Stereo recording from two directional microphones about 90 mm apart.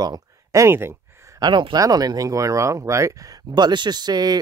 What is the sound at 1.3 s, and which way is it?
Speech, 55° right (ahead or behind).